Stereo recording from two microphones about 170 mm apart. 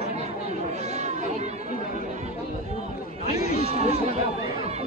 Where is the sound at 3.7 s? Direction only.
40° right (ahead or behind).